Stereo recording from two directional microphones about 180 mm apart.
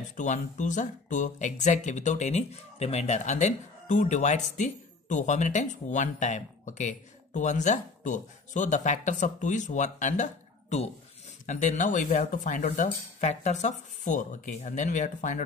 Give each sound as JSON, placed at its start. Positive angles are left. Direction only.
{"t": 0.1, "sound": "speech", "side_deg": 45}